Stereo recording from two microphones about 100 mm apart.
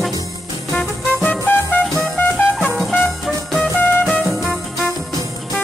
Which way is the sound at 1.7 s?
20° left (ahead or behind).